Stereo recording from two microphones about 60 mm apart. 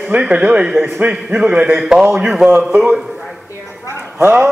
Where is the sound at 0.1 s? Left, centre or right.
Centre.